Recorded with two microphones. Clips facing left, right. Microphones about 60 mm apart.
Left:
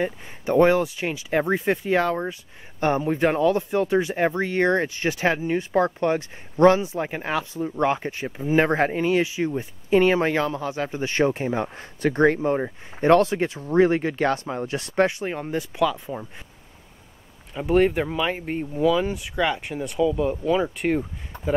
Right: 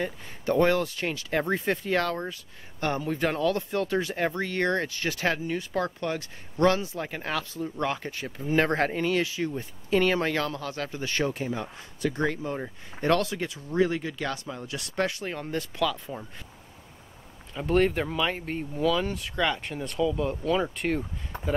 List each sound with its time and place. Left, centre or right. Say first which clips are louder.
0.0 s speech: left 4 dB; centre
17.6 s speech: left 4 dB; centre